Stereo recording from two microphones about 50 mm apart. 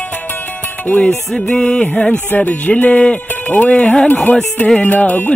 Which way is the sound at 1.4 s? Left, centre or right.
Centre.